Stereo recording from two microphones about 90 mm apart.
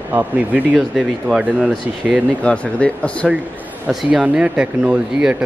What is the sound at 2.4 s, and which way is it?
Speech, 15° left (ahead or behind).